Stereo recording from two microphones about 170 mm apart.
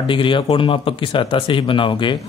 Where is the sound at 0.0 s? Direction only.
30° left (ahead or behind).